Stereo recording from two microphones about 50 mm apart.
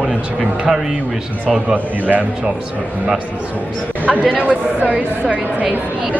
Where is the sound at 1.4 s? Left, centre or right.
Right.